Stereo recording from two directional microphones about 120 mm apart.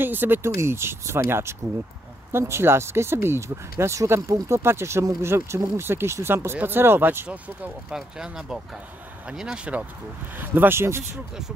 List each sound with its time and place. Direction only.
0.0 s speech: 15° right (ahead or behind)